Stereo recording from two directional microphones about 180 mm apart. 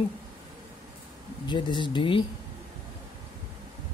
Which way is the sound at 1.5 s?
25° left (ahead or behind).